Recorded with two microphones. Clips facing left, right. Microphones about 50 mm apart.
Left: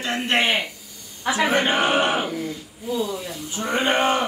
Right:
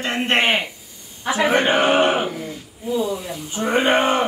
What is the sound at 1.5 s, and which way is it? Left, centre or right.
A man's voice, right.